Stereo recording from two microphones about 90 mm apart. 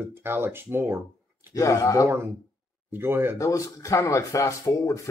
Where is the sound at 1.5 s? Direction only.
40° left (ahead or behind).